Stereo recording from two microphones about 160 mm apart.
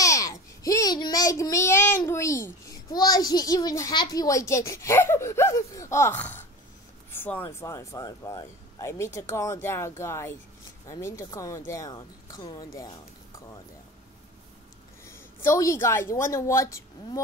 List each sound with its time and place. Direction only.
0.0 s child singing: 20° left (ahead or behind)
3.0 s a child's voice: 25° left (ahead or behind)
12.7 s a sound: 20° left (ahead or behind)
15.0 s a woman's voice: 15° left (ahead or behind)